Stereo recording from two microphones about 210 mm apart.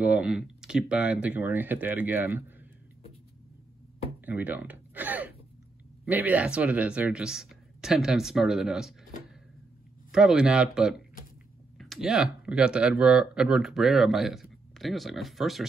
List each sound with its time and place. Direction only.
0.0 s speech: 5° right (ahead or behind)
4.3 s speech: 5° right (ahead or behind)
10.1 s speech: 5° right (ahead or behind)